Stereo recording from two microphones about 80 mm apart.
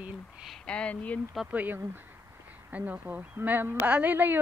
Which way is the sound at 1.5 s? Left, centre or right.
Right.